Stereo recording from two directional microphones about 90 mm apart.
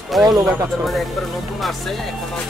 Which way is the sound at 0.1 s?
Centre (ahead or behind).